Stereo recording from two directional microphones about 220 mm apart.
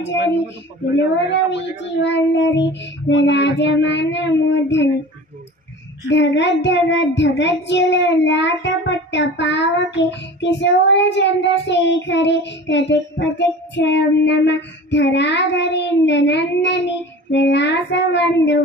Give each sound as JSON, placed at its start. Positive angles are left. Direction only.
{"t": 0.0, "sound": "child singing", "side_deg": 55}
{"t": 6.0, "sound": "child singing", "side_deg": 55}